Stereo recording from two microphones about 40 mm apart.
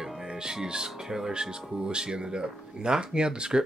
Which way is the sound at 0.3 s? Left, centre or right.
Centre.